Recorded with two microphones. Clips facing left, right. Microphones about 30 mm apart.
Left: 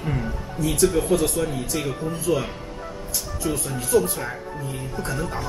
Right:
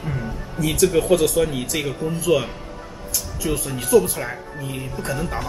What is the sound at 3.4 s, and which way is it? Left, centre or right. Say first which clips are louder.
A man's voice: right 3 dB; centre.